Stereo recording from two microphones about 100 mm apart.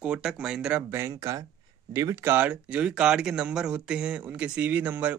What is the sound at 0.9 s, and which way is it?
Speech, 25° right (ahead or behind).